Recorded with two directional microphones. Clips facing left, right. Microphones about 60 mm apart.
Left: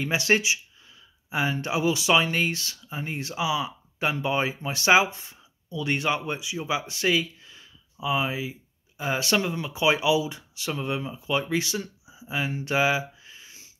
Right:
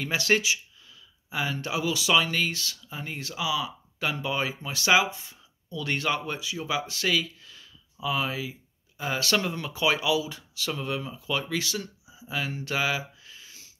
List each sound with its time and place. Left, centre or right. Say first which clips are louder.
0.0 s speech: left 2 dB; left
5.7 s speech: left 2 dB; centre
9.4 s speech: left 2 dB; centre; by 13.7 s left